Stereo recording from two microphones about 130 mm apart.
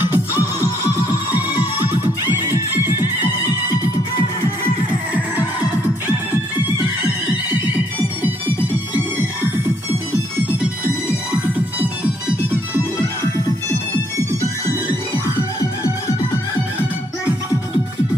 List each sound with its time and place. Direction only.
0.0 s music: 15° right (ahead or behind)
2.3 s music: 15° right (ahead or behind)
8.2 s music: 15° right (ahead or behind)